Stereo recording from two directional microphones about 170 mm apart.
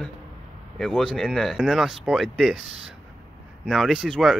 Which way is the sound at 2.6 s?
90° right.